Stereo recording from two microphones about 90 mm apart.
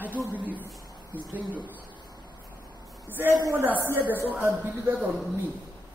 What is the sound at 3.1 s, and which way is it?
A woman's voice, 25° right (ahead or behind).